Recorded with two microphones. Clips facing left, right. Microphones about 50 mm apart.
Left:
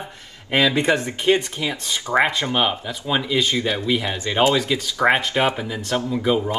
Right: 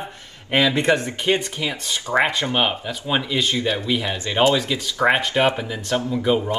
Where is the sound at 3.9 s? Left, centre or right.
Centre.